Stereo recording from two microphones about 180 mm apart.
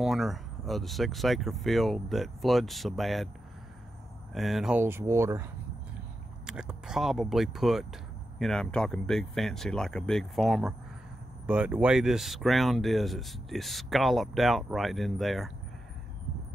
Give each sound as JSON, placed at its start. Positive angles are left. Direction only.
{"t": 0.0, "sound": "speech", "side_deg": 0}
{"t": 4.3, "sound": "speech", "side_deg": 0}